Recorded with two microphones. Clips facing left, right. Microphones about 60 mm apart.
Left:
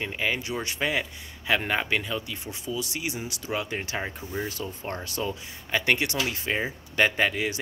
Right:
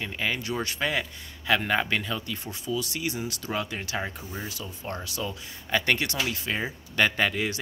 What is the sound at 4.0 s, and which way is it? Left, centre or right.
Speech, centre.